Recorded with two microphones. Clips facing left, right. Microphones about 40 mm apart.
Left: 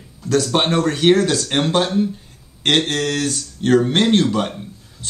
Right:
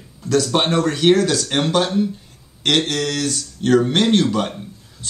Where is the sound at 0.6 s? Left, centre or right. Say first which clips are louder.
Even; centre.